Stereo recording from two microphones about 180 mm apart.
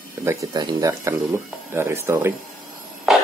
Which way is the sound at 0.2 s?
15° right (ahead or behind).